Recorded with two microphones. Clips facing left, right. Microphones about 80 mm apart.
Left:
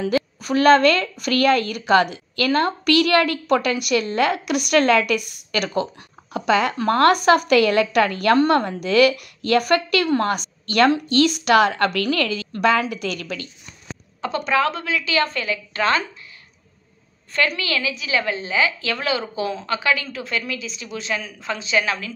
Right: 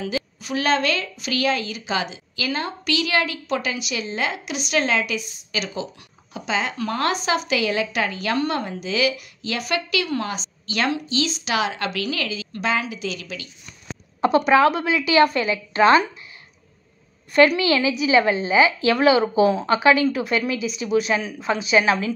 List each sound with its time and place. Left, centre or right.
0.1 s a woman's voice: left
14.2 s a woman's voice: centre
17.3 s a woman's voice: centre